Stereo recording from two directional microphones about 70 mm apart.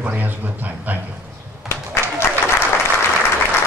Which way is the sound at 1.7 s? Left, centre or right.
Left.